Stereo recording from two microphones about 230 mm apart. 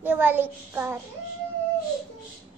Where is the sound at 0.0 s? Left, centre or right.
Centre.